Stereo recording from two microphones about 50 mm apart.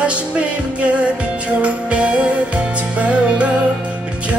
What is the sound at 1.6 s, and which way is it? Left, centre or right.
Music, right.